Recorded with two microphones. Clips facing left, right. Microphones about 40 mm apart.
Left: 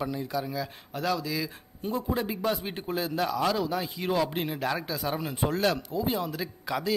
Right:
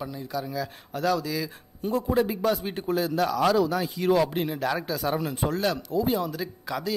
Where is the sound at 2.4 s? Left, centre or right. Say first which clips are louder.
Right 4 dB; left.